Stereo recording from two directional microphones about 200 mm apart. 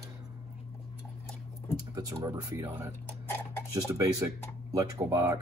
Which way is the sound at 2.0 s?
15° right (ahead or behind).